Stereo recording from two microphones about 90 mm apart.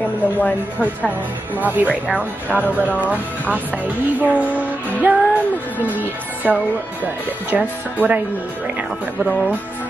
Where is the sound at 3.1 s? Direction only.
20° right (ahead or behind).